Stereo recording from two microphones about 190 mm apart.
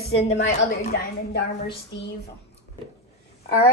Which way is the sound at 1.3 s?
60° left (ahead or behind).